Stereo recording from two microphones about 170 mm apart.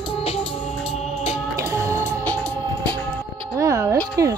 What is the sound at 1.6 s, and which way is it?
Music, 20° right (ahead or behind).